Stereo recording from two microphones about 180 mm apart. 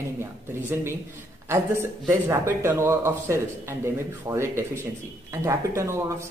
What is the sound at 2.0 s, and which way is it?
A man's voice, 15° right (ahead or behind).